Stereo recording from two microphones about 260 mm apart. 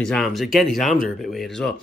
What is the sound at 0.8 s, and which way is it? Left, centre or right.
Speech, left.